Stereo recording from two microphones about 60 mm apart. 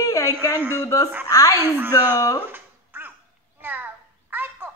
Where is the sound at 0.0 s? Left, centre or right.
Left.